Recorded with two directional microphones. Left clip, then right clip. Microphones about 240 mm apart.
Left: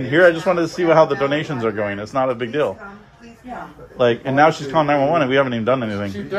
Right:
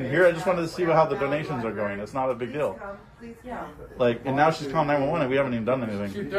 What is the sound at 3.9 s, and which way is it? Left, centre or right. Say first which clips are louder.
A man's voice: left 7 dB; left.